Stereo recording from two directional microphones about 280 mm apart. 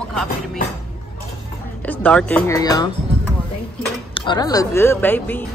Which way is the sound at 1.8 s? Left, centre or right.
Centre.